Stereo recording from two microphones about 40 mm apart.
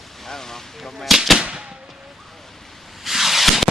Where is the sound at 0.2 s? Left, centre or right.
Centre.